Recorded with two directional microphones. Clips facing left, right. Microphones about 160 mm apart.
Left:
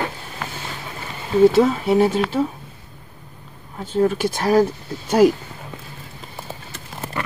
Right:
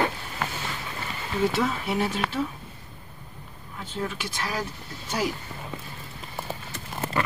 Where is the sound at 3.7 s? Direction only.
45° left (ahead or behind).